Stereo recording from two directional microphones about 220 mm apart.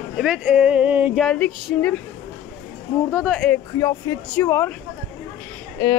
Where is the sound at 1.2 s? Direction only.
5° left (ahead or behind).